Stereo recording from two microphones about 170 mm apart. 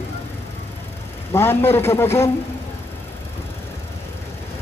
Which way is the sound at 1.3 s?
15° left (ahead or behind).